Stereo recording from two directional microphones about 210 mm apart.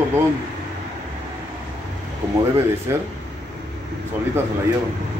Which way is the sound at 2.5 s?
10° right (ahead or behind).